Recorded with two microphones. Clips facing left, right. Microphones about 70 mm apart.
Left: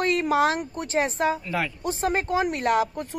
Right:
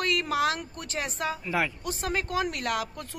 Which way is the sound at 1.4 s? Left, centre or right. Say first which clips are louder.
Even; centre.